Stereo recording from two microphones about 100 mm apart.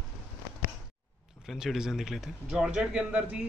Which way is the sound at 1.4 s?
5° right (ahead or behind).